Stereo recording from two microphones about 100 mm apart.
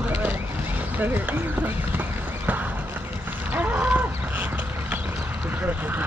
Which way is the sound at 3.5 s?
15° right (ahead or behind).